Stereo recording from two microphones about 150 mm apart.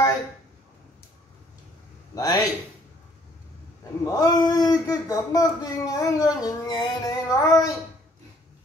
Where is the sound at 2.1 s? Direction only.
25° left (ahead or behind).